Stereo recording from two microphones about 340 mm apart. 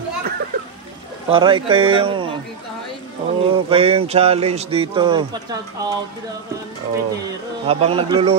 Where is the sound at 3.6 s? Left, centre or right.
Centre.